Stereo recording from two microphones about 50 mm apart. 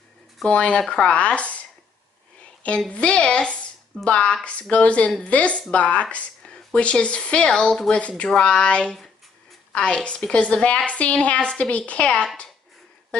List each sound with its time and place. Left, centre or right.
0.5 s speech: left
2.9 s speech: left
9.7 s a sound: left
10.0 s speech: left